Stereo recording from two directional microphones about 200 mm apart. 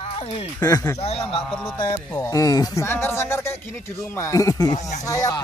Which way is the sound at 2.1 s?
15° left (ahead or behind).